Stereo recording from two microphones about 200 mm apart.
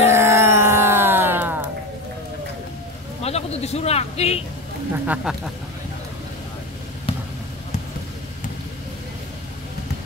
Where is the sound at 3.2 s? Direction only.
30° left (ahead or behind).